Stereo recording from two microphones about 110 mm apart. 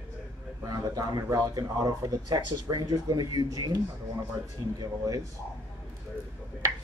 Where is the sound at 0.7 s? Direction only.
35° right (ahead or behind).